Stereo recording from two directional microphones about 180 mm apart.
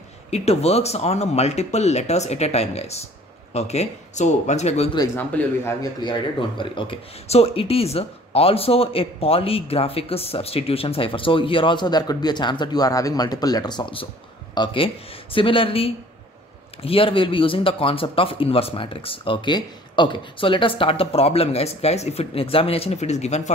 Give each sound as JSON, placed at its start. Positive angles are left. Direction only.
{"t": 0.3, "sound": "speech", "side_deg": 35}
{"t": 4.9, "sound": "speech", "side_deg": 20}